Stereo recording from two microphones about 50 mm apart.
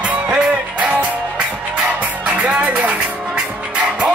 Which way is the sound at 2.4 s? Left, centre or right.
Right.